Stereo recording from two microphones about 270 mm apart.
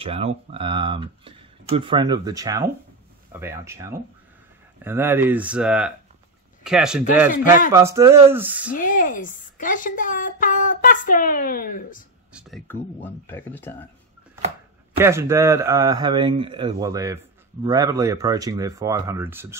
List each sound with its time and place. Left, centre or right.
0.0 s speech: right; by 8.7 s centre
8.7 s speech: left
12.3 s speech: centre
15.0 s speech: centre